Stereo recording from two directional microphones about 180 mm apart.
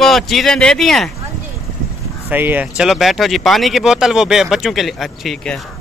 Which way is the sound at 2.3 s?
10° right (ahead or behind).